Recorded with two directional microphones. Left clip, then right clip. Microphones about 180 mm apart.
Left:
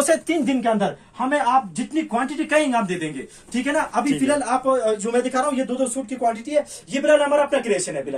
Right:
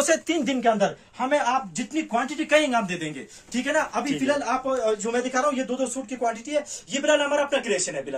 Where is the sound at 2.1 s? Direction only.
40° right (ahead or behind).